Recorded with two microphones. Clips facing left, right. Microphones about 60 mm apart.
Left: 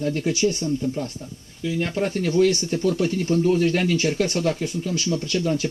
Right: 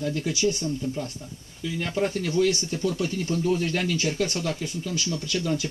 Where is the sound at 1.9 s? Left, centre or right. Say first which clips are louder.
Left 1 dB; left.